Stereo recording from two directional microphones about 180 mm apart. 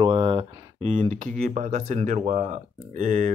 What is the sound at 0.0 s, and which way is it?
Speech, 30° right (ahead or behind).